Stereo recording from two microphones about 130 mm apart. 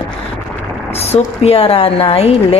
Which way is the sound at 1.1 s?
50° left (ahead or behind).